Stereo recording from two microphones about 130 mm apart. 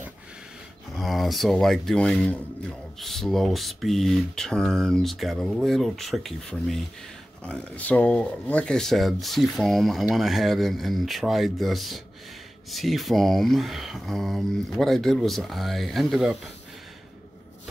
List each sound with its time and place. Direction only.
0.9 s speech: centre (ahead or behind)